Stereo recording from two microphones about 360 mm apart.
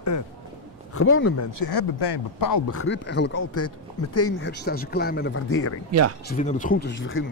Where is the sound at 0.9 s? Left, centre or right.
Left.